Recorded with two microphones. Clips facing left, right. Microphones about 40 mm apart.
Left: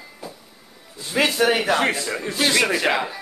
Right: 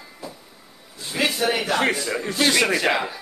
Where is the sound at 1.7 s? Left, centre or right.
Centre.